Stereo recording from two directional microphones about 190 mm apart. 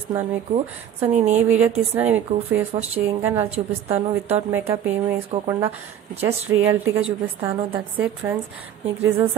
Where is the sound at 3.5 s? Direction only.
35° right (ahead or behind).